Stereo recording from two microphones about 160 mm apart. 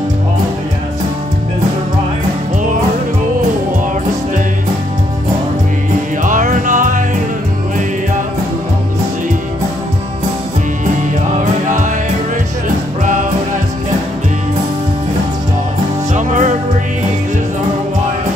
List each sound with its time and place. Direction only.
6.2 s music: 55° right (ahead or behind)
13.0 s music: 55° right (ahead or behind)
16.1 s music: 50° right (ahead or behind)